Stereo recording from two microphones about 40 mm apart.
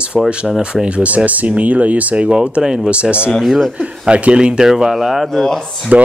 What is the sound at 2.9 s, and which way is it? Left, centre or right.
Speech, right.